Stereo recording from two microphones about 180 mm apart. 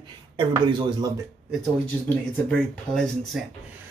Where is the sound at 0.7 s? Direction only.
25° right (ahead or behind).